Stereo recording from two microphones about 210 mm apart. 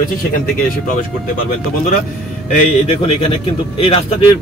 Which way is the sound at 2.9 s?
30° left (ahead or behind).